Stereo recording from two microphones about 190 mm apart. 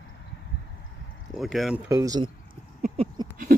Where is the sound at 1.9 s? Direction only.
20° right (ahead or behind).